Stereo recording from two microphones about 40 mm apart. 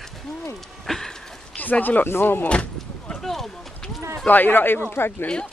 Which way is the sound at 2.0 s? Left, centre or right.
Left.